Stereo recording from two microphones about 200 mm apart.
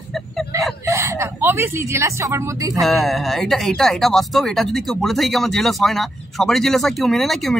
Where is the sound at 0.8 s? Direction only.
15° right (ahead or behind).